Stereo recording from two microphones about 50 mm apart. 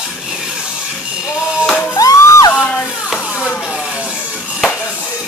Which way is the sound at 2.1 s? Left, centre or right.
Left.